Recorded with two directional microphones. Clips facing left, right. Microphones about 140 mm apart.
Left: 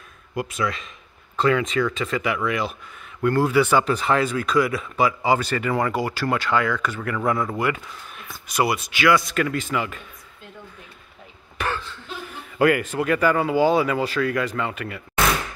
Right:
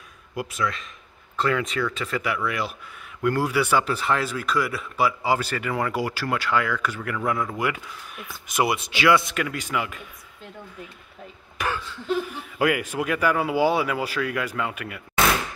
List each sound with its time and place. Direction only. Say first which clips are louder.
0.3 s speech: left 2 dB; centre (ahead or behind)
8.5 s speech: left 1 dB; 20° right (ahead or behind)
9.4 s speech: left 4 dB; 10° right (ahead or behind)
11.5 s a sound: left 1 dB; 10° right (ahead or behind)
12.5 s speech: left 4 dB; 5° right (ahead or behind)